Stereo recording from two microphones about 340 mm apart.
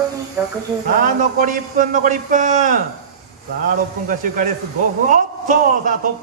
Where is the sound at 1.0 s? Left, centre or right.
Right.